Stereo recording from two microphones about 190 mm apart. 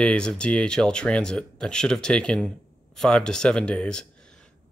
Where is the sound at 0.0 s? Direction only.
5° left (ahead or behind).